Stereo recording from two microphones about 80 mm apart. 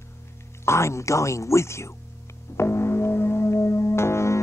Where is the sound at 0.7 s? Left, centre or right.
Left.